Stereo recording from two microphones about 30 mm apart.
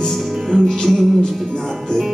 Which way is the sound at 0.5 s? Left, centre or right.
Centre.